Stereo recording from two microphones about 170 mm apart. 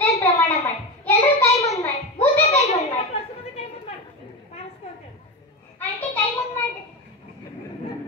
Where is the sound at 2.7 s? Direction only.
40° left (ahead or behind).